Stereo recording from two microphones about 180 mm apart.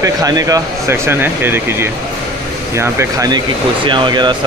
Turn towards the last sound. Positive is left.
turn(degrees=-25)  # may be behind; listen again after turning